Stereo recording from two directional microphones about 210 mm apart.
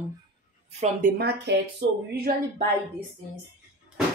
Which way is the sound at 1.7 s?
45° right (ahead or behind).